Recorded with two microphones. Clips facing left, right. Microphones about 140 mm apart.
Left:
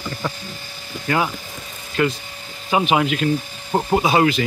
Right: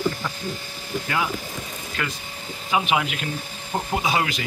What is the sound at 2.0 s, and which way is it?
Speech, 30° left (ahead or behind).